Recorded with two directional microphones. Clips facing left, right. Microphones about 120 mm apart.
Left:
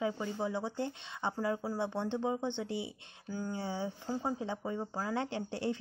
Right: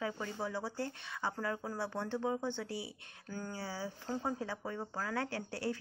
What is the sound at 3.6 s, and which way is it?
Speech, 20° left (ahead or behind).